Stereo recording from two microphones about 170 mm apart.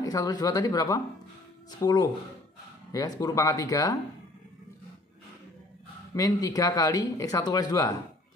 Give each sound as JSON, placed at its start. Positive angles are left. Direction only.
{"t": 0.0, "sound": "speech", "side_deg": 20}
{"t": 6.1, "sound": "speech", "side_deg": 20}